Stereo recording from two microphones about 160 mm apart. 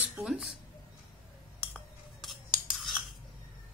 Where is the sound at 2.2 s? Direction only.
Centre (ahead or behind).